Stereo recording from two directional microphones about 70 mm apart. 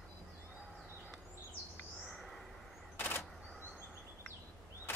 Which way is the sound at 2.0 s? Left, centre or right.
Centre.